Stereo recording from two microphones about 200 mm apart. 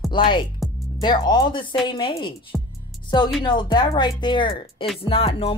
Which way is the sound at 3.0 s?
20° left (ahead or behind).